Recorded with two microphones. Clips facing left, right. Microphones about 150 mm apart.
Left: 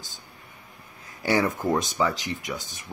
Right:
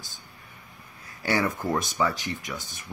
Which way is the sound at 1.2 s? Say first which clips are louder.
Left 3 dB; 15° left (ahead or behind).